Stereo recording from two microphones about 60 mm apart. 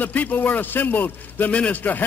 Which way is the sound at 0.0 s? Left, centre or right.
Left.